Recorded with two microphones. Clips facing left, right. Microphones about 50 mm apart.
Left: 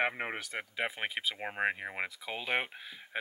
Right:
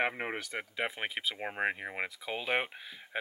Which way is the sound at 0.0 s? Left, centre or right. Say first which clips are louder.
Even; centre.